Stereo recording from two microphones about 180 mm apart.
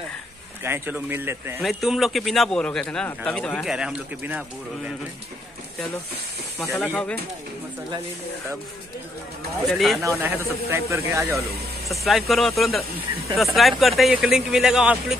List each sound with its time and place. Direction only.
0.7 s speech: 10° right (ahead or behind)
1.6 s speech: centre (ahead or behind)
6.7 s speech: 5° left (ahead or behind)
9.7 s speech: centre (ahead or behind)
10.0 s speech: 15° right (ahead or behind)
11.9 s speech: centre (ahead or behind)